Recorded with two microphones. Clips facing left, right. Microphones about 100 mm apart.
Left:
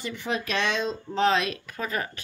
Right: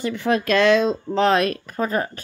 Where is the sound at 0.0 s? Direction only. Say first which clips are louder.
Right 9 dB; 60° right (ahead or behind); by 0.7 s 75° right (ahead or behind).